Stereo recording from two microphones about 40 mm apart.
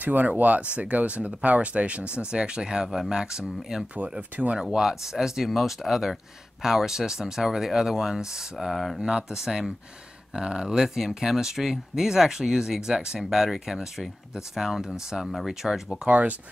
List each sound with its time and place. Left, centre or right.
0.0 s speech: right
0.4 s speech: right
2.3 s speech: right
4.2 s speech: right
4.7 s speech: centre
8.5 s speech: centre
9.0 s speech: centre
16.1 s speech: right